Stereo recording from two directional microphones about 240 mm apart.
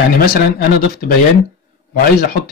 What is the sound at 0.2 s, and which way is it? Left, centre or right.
Speech, left.